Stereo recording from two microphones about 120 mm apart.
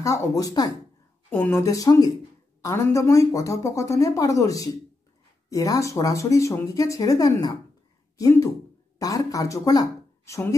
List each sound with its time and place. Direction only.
0.0 s speech: 25° left (ahead or behind)
1.3 s speech: 15° left (ahead or behind)
1.6 s a woman's voice: 30° left (ahead or behind)